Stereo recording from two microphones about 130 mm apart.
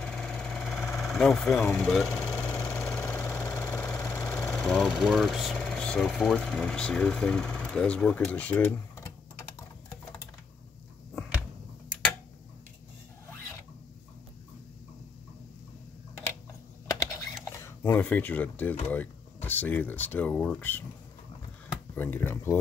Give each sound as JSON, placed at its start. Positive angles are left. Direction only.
{"t": 0.0, "sound": "engine", "side_deg": 5}
{"t": 3.7, "sound": "speech", "side_deg": 5}
{"t": 17.6, "sound": "speech", "side_deg": 20}
{"t": 21.9, "sound": "speech", "side_deg": 15}